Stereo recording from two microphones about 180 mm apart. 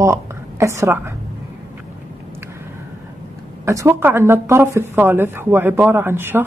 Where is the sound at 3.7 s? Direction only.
15° right (ahead or behind).